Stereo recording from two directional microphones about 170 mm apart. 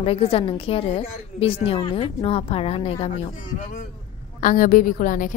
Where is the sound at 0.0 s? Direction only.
35° left (ahead or behind).